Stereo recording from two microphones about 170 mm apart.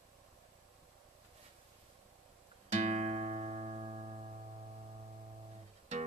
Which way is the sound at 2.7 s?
40° right (ahead or behind).